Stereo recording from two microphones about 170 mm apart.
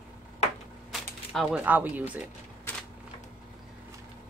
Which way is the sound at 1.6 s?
10° right (ahead or behind).